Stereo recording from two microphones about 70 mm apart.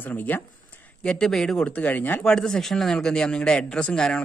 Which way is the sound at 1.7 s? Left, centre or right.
Left.